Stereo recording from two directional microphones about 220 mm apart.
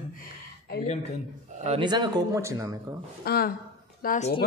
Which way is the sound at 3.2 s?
45° left (ahead or behind).